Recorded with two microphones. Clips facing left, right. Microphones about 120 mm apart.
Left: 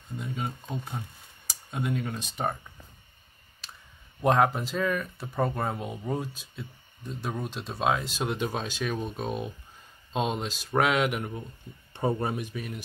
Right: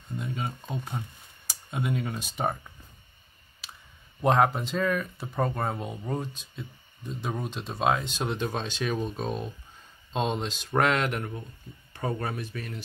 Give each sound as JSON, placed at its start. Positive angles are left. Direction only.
{"t": 0.2, "sound": "speech", "side_deg": 0}
{"t": 4.2, "sound": "speech", "side_deg": 0}
{"t": 11.9, "sound": "speech", "side_deg": 25}